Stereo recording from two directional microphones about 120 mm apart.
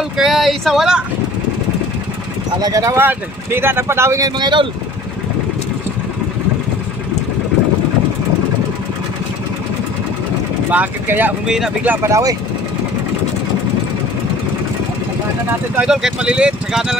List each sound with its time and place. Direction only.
0.2 s speech: centre (ahead or behind)
2.6 s speech: 30° right (ahead or behind)
4.4 s speech: 40° right (ahead or behind)
10.7 s speech: 15° right (ahead or behind)
11.4 s speech: 5° right (ahead or behind)
11.9 s speech: 25° right (ahead or behind)
15.7 s speech: 5° right (ahead or behind)